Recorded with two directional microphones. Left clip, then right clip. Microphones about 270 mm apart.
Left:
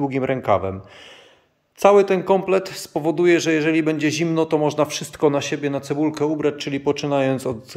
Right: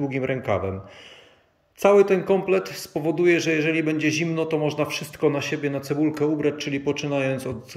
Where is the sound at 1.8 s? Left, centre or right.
Centre.